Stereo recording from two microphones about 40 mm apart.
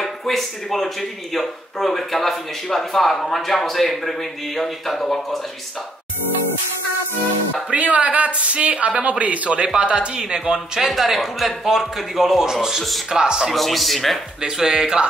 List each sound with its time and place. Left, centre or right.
0.0 s speech: centre
7.7 s speech: right
10.2 s speech: centre
10.9 s speech: centre
13.5 s speech: centre
14.4 s speech: centre